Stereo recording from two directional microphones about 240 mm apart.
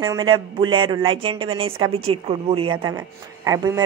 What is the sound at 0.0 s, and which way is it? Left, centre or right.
A man's voice, centre.